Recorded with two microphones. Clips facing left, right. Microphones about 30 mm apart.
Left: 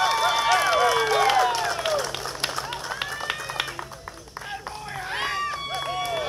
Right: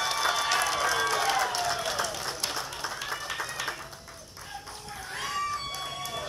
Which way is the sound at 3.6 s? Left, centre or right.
Left.